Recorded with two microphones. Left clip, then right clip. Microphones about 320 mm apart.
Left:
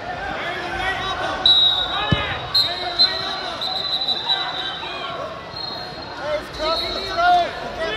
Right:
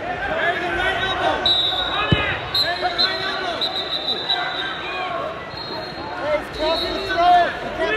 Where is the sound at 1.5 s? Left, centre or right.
Left.